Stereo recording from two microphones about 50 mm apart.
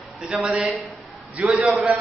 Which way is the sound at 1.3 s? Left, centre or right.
Right.